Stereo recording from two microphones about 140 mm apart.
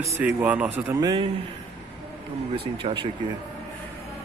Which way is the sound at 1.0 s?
35° right (ahead or behind).